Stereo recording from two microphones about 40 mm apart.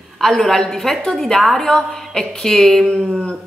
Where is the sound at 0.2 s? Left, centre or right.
Centre.